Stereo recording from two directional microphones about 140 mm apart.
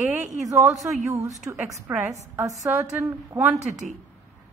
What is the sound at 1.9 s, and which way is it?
A woman's voice, 15° right (ahead or behind).